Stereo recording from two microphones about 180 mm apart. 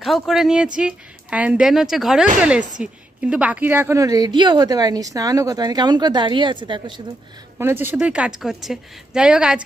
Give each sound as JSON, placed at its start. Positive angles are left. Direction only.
{"t": 0.0, "sound": "a woman's voice", "side_deg": 0}
{"t": 7.5, "sound": "a woman's voice", "side_deg": -10}